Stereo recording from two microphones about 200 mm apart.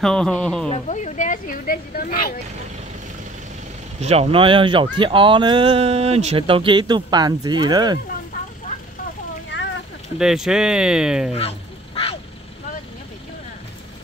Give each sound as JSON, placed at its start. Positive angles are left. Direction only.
{"t": 0.0, "sound": "speech", "side_deg": 5}
{"t": 0.7, "sound": "speech", "side_deg": 35}
{"t": 4.0, "sound": "speech", "side_deg": -30}
{"t": 9.5, "sound": "a sound", "side_deg": 65}
{"t": 10.1, "sound": "speech", "side_deg": 0}
{"t": 11.3, "sound": "duck", "side_deg": 30}